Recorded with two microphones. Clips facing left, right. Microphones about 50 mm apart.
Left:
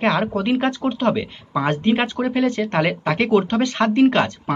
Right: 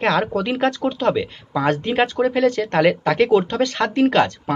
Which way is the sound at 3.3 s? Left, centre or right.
Left.